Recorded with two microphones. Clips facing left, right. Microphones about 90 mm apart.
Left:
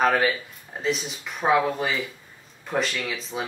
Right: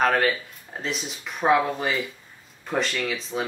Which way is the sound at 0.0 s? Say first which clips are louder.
Even; 5° left (ahead or behind).